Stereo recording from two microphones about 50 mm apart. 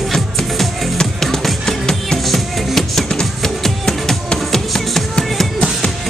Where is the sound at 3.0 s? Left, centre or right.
Centre.